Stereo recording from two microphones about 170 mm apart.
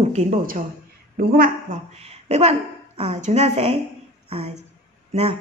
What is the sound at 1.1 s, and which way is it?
Speech, 55° right (ahead or behind).